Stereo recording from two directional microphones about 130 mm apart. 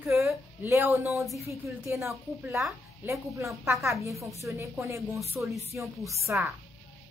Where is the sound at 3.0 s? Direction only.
15° right (ahead or behind).